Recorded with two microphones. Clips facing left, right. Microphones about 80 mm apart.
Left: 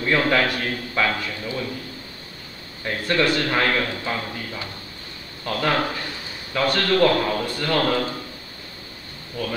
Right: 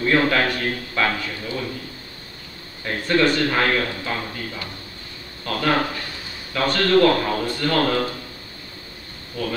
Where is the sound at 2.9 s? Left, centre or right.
Centre.